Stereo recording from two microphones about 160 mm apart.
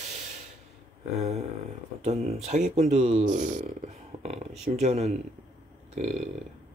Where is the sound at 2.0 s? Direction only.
40° right (ahead or behind).